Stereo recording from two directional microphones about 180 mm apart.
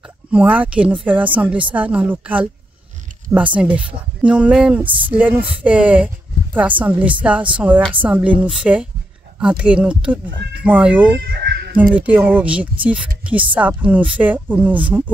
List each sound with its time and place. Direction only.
0.3 s speech: 10° right (ahead or behind)
11.1 s a sound: 65° right (ahead or behind)
11.9 s speech: 10° right (ahead or behind)